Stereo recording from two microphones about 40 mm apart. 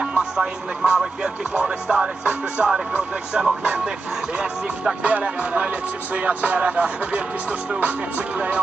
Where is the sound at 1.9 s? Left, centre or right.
Right.